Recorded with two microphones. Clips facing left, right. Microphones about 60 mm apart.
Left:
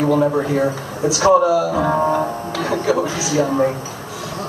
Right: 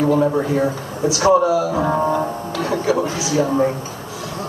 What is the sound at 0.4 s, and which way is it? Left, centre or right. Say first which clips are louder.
Speech: left 1 dB; left.